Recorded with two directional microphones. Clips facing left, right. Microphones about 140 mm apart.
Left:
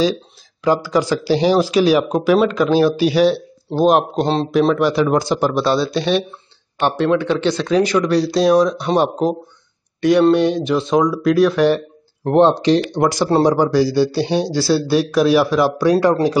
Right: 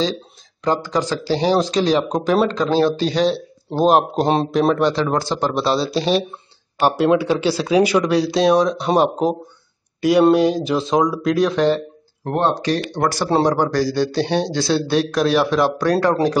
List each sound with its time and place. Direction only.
0.7 s speech: 10° left (ahead or behind)
3.8 s speech: 5° right (ahead or behind)
4.7 s speech: 5° left (ahead or behind)
5.9 s speech: 35° right (ahead or behind)
6.8 s speech: 10° right (ahead or behind); by 16.3 s 10° left (ahead or behind)